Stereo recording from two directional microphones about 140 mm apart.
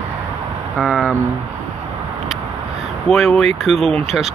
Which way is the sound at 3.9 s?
45° right (ahead or behind).